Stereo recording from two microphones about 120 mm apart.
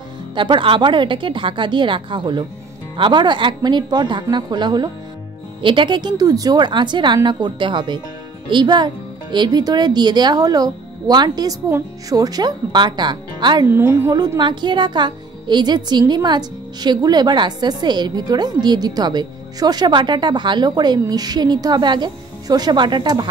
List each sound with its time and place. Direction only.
0.3 s a woman's voice: 45° right (ahead or behind)
13.7 s a woman's voice: 15° right (ahead or behind)
14.4 s speech: 40° right (ahead or behind)